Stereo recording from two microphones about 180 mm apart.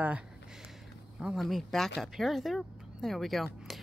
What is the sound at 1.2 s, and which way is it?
A woman's voice, centre (ahead or behind).